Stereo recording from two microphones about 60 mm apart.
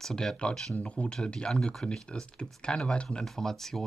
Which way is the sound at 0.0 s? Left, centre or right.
Centre.